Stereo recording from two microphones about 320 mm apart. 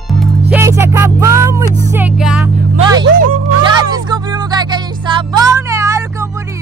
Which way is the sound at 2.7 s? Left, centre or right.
Centre.